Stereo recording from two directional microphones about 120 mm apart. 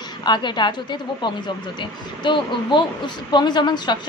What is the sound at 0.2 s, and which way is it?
A woman's voice, 40° left (ahead or behind).